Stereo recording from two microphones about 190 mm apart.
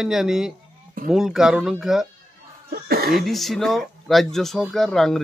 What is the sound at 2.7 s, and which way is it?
Speech, 50° right (ahead or behind).